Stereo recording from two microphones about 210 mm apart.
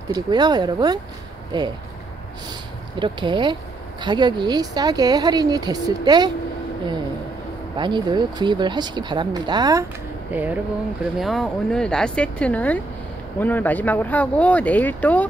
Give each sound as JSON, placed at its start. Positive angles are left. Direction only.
{"t": 0.1, "sound": "a woman's voice", "side_deg": -20}
{"t": 3.0, "sound": "a woman's voice", "side_deg": -20}
{"t": 7.7, "sound": "a woman's voice", "side_deg": -20}